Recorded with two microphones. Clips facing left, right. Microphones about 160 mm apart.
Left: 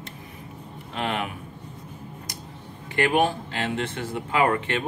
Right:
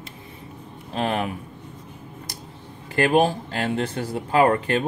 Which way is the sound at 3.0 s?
35° right (ahead or behind).